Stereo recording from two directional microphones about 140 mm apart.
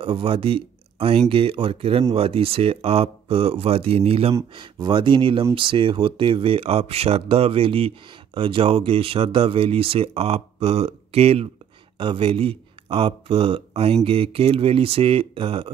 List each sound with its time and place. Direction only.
0.0 s speech: 40° right (ahead or behind)